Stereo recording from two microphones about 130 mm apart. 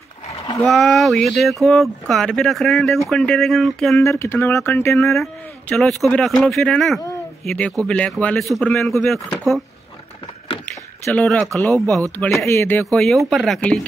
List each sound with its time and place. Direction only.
0.7 s speech: centre (ahead or behind)
4.0 s speech: 20° left (ahead or behind)
5.0 s speech: centre (ahead or behind)
11.2 s speech: centre (ahead or behind)
12.4 s speech: 20° left (ahead or behind)
12.9 s speech: centre (ahead or behind)